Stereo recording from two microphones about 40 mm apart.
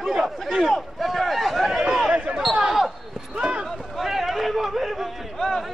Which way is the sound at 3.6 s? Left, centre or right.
Centre.